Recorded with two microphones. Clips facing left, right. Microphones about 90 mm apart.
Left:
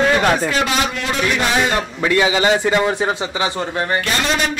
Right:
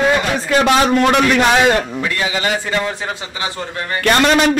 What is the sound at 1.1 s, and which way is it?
Speech, 75° right (ahead or behind).